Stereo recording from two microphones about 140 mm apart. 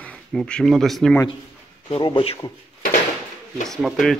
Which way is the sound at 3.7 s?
Centre (ahead or behind).